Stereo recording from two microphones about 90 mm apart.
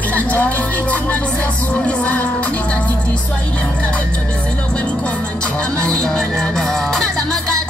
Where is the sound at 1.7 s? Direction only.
15° left (ahead or behind).